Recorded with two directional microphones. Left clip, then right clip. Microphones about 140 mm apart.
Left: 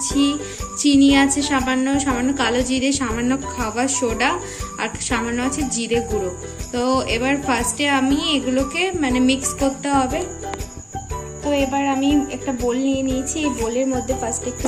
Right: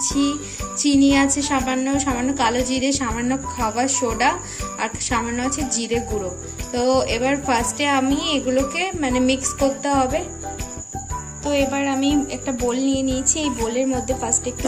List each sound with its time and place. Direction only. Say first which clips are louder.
0.0 s music: left 2 dB; 35° right (ahead or behind)
0.8 s a woman's voice: left 2 dB; 35° right (ahead or behind)
11.7 s music: left 2 dB; 50° right (ahead or behind)